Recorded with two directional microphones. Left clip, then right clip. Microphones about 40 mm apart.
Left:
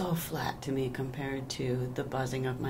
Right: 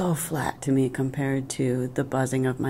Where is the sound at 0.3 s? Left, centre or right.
Right; by 1.9 s centre.